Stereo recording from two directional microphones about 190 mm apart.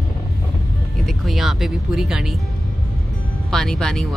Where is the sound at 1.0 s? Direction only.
Centre (ahead or behind).